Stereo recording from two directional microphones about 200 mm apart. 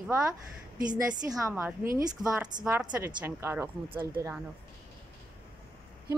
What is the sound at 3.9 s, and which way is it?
Speech, 25° right (ahead or behind).